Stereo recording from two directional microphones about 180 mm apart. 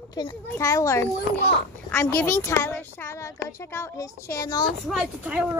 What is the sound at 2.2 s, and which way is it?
Speech, 15° left (ahead or behind).